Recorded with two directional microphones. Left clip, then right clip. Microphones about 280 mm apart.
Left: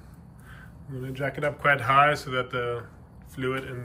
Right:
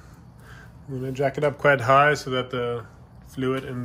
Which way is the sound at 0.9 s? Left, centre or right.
Centre.